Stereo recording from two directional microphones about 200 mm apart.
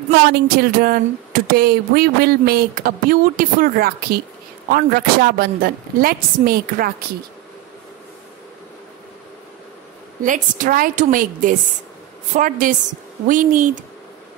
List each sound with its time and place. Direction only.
0.3 s speech: 50° right (ahead or behind)
10.2 s speech: 40° right (ahead or behind)